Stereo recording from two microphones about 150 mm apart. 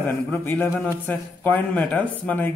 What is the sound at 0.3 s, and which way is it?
A man's voice, 10° left (ahead or behind).